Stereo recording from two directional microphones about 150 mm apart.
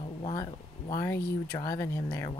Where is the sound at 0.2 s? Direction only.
30° left (ahead or behind).